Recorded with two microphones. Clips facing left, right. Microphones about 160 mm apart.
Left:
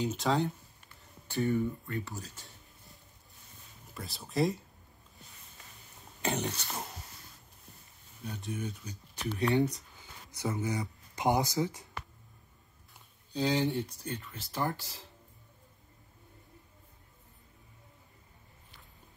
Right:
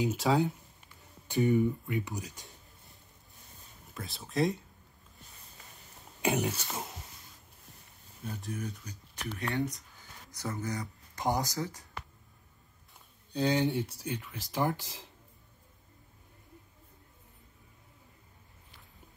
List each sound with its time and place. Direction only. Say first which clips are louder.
0.0 s speech: right 2 dB; 5° right (ahead or behind)
1.2 s speech: right 4 dB; 15° right (ahead or behind)
3.9 s speech: even; centre (ahead or behind)
6.2 s speech: right 3 dB; 10° right (ahead or behind)
8.2 s speech: even; centre (ahead or behind)
9.4 s speech: left 5 dB; 20° left (ahead or behind)
10.4 s speech: left 3 dB; 10° left (ahead or behind)
13.3 s speech: right 1 dB; centre (ahead or behind); by 15.0 s 15° right (ahead or behind)